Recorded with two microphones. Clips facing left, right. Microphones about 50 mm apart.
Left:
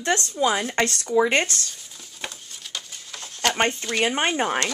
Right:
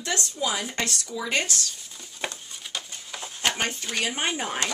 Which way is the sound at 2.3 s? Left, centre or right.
Centre.